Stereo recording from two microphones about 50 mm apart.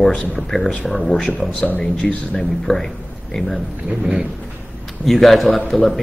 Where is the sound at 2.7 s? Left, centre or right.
Centre.